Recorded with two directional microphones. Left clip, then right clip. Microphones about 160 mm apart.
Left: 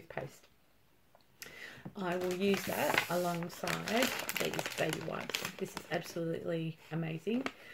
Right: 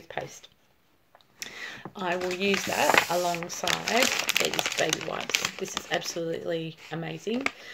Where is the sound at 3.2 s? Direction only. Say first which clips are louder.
Right 8 dB; 25° right (ahead or behind).